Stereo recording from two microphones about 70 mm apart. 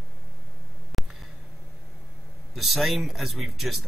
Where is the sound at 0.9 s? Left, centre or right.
Centre.